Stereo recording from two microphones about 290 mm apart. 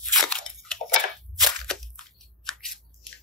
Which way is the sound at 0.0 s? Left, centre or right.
Centre.